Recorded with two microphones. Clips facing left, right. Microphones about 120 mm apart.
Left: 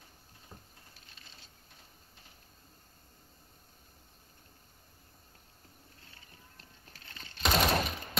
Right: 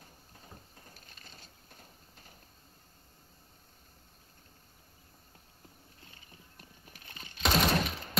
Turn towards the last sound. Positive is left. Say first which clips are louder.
# even
turn(degrees=0)  # may be behind; listen again after turning